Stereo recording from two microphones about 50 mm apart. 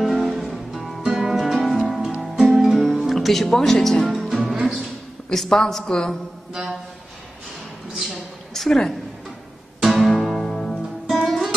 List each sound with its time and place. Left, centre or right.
0.0 s music: centre
5.3 s a woman's voice: centre
7.9 s a sound: centre
8.6 s a woman's voice: centre
9.8 s music: centre